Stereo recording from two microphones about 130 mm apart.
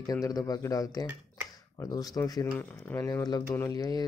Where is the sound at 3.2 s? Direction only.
30° left (ahead or behind).